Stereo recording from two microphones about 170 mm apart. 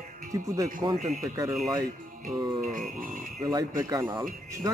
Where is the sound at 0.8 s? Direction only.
25° right (ahead or behind).